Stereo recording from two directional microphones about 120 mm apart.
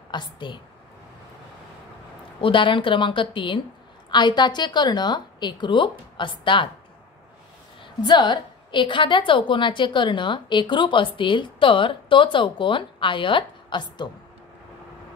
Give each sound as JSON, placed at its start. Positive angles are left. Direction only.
{"t": 0.1, "sound": "a woman's voice", "side_deg": 40}
{"t": 2.4, "sound": "a woman's voice", "side_deg": 45}
{"t": 8.0, "sound": "a woman's voice", "side_deg": 40}